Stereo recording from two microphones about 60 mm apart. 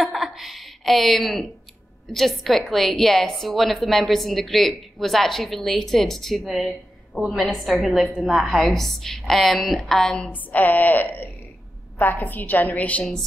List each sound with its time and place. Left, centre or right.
0.0 s a sound: centre
2.1 s a woman's voice: centre
10.3 s a woman's voice: left